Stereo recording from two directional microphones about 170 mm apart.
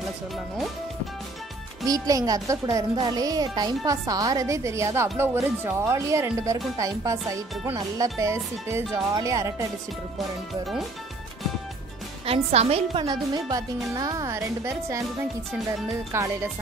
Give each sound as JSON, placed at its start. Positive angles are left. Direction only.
{"t": 1.9, "sound": "speech", "side_deg": -20}
{"t": 12.3, "sound": "a woman's voice", "side_deg": -40}
{"t": 16.1, "sound": "music", "side_deg": -15}